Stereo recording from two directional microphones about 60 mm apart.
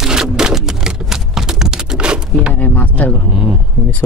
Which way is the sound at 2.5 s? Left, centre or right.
Left.